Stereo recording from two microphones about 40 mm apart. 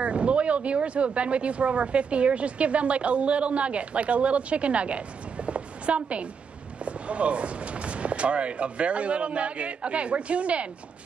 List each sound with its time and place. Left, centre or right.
0.0 s speech: right